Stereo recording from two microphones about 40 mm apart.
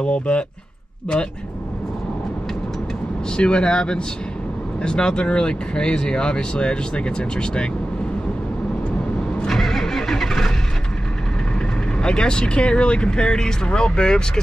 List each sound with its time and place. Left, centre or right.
0.0 s speech: left
3.3 s speech: left
9.5 s vehicle: centre
12.0 s speech: left